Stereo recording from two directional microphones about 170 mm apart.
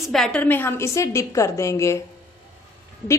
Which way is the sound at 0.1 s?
5° left (ahead or behind).